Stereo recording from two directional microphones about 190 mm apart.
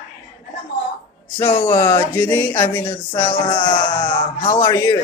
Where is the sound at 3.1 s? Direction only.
25° left (ahead or behind).